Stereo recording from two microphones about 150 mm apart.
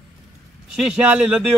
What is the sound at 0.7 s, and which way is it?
Speech, 5° right (ahead or behind).